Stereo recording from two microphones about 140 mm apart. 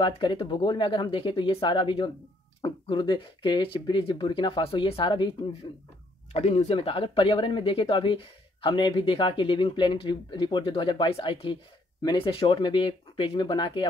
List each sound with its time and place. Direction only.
0.0 s speech: 35° left (ahead or behind)
6.3 s speech: 50° left (ahead or behind)